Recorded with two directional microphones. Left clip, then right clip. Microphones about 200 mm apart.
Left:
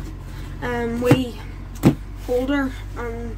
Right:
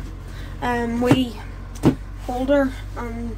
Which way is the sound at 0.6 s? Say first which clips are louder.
Right 1 dB; 10° right (ahead or behind).